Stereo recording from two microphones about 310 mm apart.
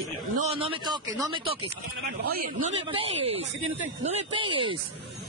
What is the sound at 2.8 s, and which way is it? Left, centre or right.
Speech, centre.